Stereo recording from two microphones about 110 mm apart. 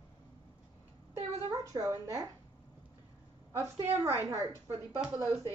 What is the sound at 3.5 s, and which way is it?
A woman's voice, 30° right (ahead or behind).